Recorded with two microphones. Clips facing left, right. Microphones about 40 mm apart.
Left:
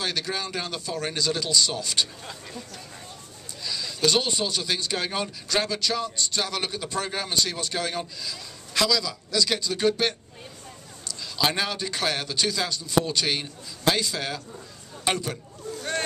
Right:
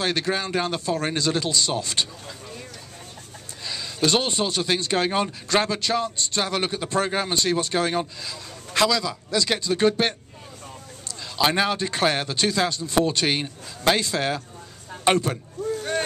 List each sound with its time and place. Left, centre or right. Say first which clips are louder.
0.0 s a man's voice: right 5 dB; right
3.6 s a man's voice: right 1 dB; right
11.3 s a man's voice: right 4 dB; centre